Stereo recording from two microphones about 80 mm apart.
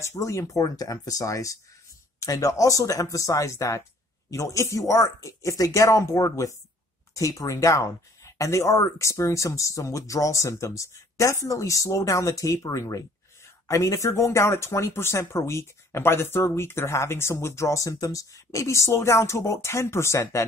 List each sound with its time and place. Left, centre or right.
0.0 s speech: left